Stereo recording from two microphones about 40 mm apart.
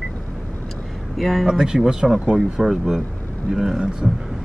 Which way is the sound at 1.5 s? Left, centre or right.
Centre.